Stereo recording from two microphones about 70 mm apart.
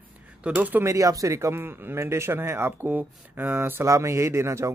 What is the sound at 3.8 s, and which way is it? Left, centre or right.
Speech, right.